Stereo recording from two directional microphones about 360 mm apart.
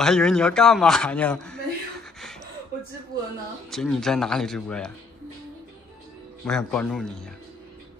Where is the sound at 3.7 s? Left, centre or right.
Centre.